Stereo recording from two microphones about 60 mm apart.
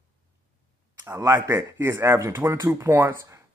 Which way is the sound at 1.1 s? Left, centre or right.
Right.